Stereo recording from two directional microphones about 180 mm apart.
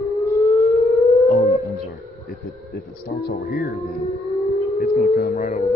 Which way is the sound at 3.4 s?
65° left (ahead or behind).